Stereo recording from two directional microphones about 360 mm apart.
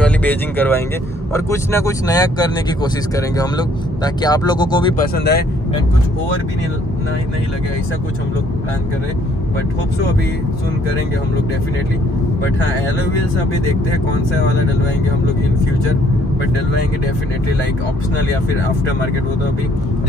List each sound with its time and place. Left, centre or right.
0.0 s speech: centre
4.9 s speech: left